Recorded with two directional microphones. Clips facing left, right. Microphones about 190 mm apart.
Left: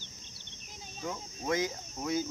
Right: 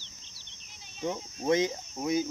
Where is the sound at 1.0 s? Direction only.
25° right (ahead or behind).